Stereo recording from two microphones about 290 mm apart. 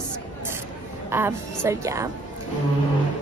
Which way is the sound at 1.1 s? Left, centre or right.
Centre.